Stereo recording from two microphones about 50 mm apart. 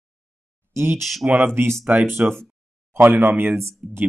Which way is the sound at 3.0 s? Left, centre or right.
Right.